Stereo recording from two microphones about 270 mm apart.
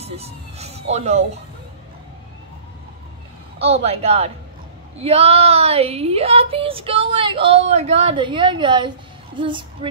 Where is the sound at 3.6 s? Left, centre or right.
Right.